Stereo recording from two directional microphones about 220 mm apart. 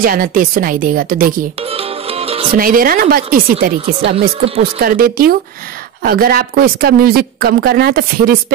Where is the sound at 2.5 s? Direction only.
40° right (ahead or behind).